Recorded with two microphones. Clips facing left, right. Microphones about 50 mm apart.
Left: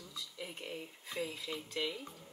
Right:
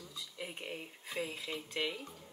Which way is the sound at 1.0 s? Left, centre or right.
Centre.